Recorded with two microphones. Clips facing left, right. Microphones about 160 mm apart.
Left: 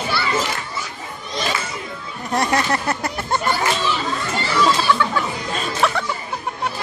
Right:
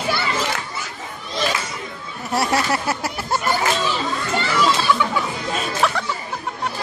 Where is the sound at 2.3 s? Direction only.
5° right (ahead or behind).